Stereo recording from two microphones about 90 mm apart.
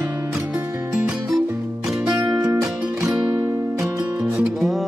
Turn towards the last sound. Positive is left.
turn(degrees=0)  # may be behind; listen again after turning